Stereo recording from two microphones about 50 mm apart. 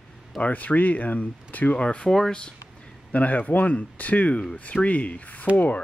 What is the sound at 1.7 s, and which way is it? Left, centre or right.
Speech, left.